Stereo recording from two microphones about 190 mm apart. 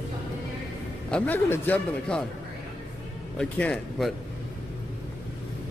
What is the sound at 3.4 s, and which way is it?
Speech, 5° left (ahead or behind).